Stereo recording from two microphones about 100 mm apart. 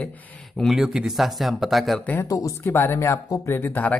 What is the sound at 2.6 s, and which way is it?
Speech, 20° left (ahead or behind).